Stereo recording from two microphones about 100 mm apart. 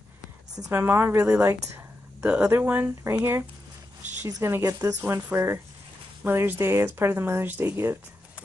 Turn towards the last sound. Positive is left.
turn(degrees=-25)  # may be behind; listen again after turning